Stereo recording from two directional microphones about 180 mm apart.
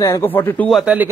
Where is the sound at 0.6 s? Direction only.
Centre (ahead or behind).